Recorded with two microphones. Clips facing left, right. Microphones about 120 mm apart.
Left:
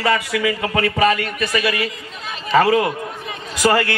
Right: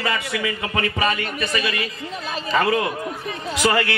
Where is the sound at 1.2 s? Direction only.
35° right (ahead or behind).